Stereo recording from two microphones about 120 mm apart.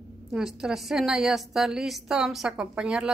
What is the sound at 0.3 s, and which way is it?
A woman's voice, 5° right (ahead or behind).